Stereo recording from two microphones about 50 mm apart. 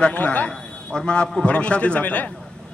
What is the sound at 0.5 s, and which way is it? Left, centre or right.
A man's voice, centre.